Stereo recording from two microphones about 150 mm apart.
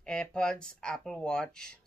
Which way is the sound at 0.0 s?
5° left (ahead or behind).